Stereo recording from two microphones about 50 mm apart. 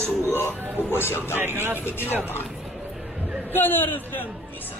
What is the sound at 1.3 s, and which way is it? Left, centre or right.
Speech, right.